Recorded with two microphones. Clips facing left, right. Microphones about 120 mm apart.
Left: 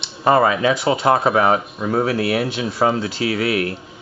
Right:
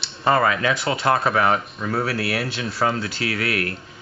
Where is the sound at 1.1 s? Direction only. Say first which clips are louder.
Left 4 dB; 20° left (ahead or behind).